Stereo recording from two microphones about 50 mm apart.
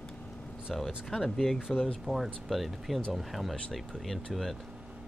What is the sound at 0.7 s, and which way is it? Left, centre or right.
Speech, centre.